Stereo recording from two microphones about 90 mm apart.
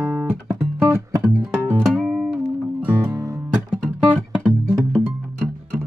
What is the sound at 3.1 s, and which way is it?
Music, 30° right (ahead or behind).